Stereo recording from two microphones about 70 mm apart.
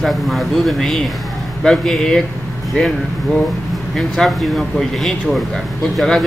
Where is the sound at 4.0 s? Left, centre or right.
Centre.